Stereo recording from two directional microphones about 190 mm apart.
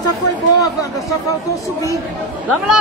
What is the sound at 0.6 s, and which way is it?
Speech, 15° left (ahead or behind).